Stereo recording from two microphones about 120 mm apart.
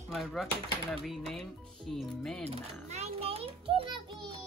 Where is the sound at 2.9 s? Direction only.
60° right (ahead or behind).